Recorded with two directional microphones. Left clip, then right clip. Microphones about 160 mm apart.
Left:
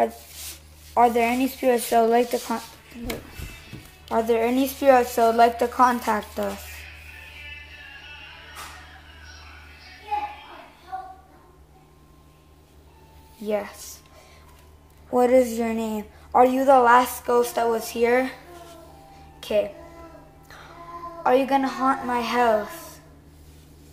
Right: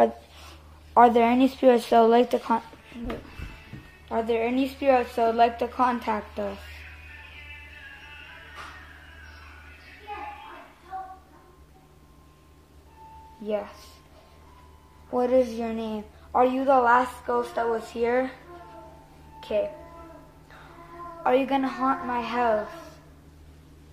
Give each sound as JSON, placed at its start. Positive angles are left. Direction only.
{"t": 0.9, "sound": "speech", "side_deg": -15}
{"t": 4.1, "sound": "speech", "side_deg": 25}
{"t": 13.5, "sound": "speech", "side_deg": 25}
{"t": 15.0, "sound": "a woman's voice", "side_deg": 35}
{"t": 21.2, "sound": "speech", "side_deg": 20}